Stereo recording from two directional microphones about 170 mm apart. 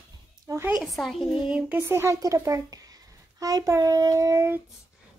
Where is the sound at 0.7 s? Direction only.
Centre (ahead or behind).